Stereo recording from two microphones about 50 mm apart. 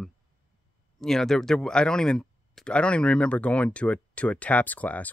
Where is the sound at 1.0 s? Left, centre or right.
Centre.